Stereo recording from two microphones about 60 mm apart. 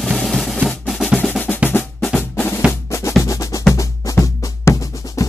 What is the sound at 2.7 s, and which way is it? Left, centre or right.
Drum, left.